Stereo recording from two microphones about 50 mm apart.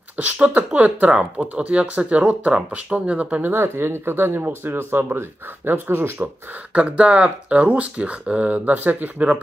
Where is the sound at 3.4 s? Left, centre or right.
Right.